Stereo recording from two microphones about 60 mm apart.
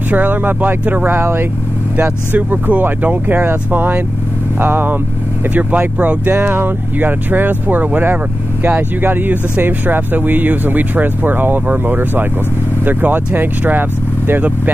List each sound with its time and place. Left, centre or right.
0.1 s speech: right
2.0 s speech: right